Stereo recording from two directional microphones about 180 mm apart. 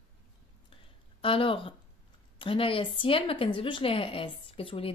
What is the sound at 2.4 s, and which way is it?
A woman's voice, 30° left (ahead or behind).